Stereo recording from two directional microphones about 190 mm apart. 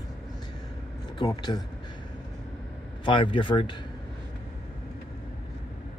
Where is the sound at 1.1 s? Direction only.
20° left (ahead or behind).